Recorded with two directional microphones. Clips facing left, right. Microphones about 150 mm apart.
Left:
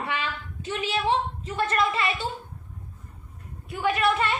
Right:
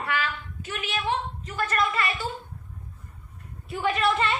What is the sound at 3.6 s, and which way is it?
Speech, centre (ahead or behind).